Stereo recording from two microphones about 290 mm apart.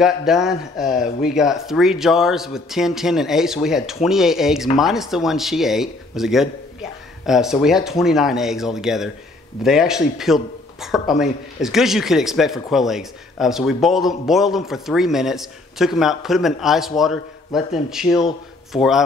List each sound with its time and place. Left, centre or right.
0.0 s a man's voice: centre